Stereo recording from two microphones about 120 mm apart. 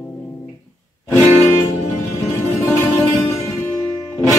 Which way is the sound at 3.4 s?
25° left (ahead or behind).